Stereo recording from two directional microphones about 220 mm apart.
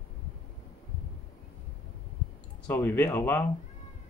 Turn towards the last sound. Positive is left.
turn(degrees=10)  # may be behind; listen again after turning